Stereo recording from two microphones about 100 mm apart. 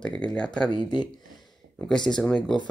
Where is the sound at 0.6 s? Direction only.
45° left (ahead or behind).